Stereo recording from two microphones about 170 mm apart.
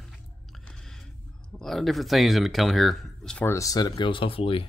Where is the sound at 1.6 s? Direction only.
Centre (ahead or behind).